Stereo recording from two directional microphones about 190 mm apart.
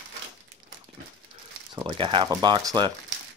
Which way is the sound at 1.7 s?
25° right (ahead or behind).